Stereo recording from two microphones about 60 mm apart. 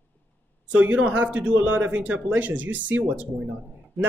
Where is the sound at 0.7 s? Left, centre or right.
Right.